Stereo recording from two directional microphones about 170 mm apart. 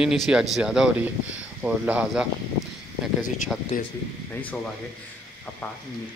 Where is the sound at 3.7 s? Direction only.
50° left (ahead or behind).